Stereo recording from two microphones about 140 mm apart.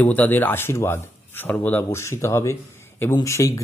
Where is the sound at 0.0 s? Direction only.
10° left (ahead or behind).